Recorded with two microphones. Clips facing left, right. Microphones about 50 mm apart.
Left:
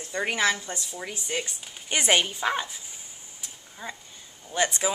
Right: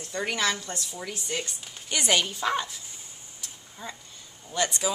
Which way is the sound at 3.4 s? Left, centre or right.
Centre.